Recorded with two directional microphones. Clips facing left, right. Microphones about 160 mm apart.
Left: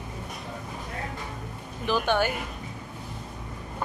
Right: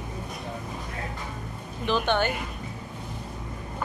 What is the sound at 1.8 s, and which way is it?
Speech, 5° left (ahead or behind).